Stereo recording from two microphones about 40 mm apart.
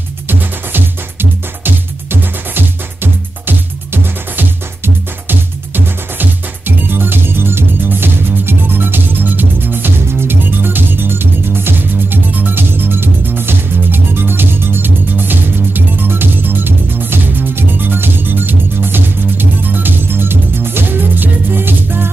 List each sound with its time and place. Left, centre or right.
0.3 s music: right
12.3 s music: right